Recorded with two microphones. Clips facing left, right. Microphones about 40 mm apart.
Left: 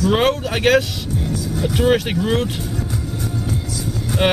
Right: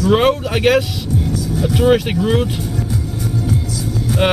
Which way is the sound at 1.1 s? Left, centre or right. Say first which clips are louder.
Right 4 dB; centre.